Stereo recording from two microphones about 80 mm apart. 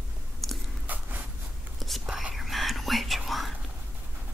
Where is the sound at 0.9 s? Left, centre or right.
Right.